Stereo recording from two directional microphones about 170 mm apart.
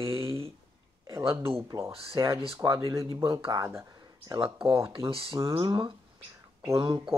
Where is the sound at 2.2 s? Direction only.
20° right (ahead or behind).